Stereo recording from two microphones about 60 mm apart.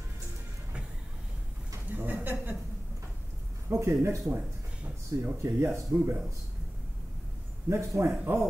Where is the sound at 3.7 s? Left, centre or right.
Right.